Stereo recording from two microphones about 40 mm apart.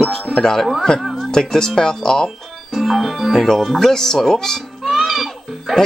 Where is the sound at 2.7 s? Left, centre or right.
Centre.